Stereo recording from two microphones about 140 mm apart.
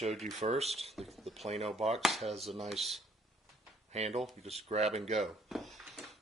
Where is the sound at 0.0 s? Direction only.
50° right (ahead or behind).